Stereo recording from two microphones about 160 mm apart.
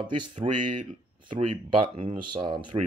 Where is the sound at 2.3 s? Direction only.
30° right (ahead or behind).